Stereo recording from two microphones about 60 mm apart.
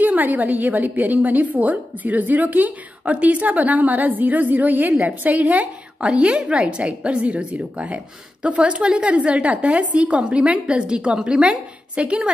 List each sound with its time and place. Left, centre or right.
0.0 s a woman's voice: right